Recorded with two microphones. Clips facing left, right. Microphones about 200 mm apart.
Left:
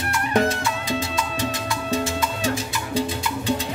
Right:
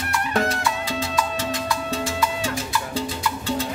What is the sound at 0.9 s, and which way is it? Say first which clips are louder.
Salsa music: even; 20° left (ahead or behind).